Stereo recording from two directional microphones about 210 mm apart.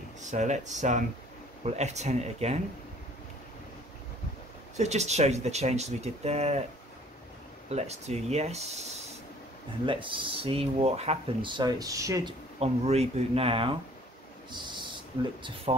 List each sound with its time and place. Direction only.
0.2 s speech: 35° right (ahead or behind)
4.7 s speech: 30° right (ahead or behind)
7.7 s speech: 30° right (ahead or behind)
14.5 s a sound: 20° right (ahead or behind)